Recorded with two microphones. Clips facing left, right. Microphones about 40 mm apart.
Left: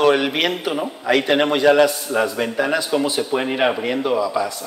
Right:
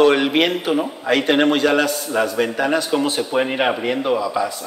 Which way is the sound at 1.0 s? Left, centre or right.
Right.